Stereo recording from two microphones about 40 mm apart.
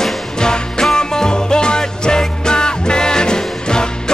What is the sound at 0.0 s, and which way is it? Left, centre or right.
Music, centre.